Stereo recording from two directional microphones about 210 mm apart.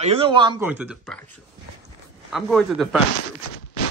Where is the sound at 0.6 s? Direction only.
5° right (ahead or behind).